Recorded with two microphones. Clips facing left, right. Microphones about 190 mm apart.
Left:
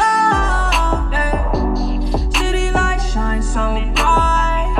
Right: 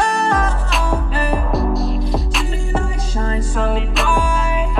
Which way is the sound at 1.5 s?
Centre (ahead or behind).